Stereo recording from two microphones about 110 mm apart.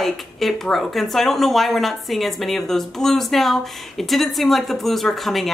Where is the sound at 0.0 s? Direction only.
Centre (ahead or behind).